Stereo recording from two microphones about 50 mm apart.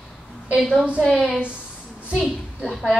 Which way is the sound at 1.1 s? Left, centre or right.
Centre.